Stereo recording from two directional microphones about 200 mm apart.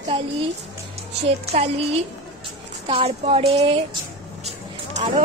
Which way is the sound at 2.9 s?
30° right (ahead or behind).